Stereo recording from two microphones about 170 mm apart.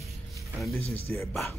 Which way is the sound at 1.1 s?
10° left (ahead or behind).